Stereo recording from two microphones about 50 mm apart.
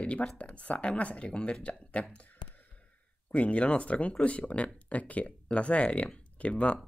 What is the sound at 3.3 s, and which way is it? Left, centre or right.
Speech, left.